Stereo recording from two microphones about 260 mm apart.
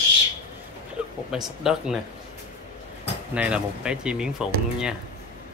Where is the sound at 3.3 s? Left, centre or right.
Centre.